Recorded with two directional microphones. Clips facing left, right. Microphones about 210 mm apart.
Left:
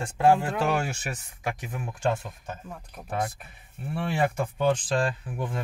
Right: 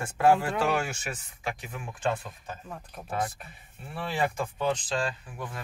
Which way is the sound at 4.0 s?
55° left (ahead or behind).